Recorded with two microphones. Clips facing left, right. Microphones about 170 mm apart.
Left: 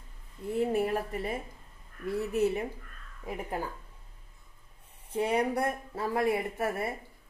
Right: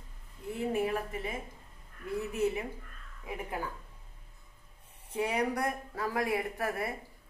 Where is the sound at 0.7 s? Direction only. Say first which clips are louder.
Left 2 dB; 35° left (ahead or behind).